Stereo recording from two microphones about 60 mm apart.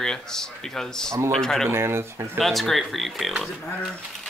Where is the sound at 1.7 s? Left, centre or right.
Right.